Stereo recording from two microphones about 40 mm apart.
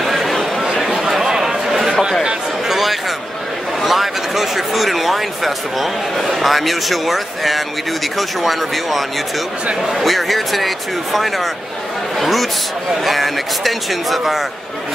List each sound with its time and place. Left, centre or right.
0.0 s chatter: centre
0.8 s a sound: centre
3.8 s speech: centre
12.2 s speech: centre